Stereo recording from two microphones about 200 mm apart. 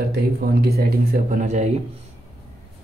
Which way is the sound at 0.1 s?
55° right (ahead or behind).